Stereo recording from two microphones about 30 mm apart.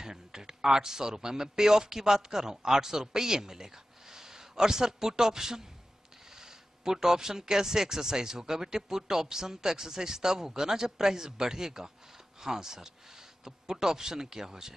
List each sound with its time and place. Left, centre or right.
0.0 s speech: centre
6.8 s a man's voice: centre